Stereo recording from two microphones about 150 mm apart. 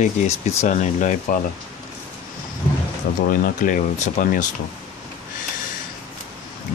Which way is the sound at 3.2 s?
65° left (ahead or behind).